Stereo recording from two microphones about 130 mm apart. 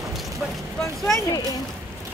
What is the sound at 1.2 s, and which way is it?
Speech, 25° left (ahead or behind).